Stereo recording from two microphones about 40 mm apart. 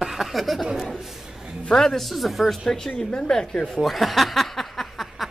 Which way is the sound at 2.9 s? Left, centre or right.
Left.